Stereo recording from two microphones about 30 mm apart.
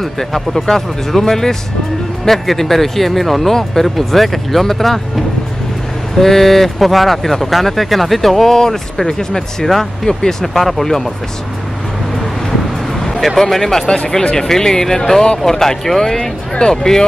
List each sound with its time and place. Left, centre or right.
0.0 s speech: centre
6.1 s speech: centre
10.4 s speech: centre
13.0 s a sound: centre
13.4 s speech: centre
13.8 s speech: left
14.3 s speech: centre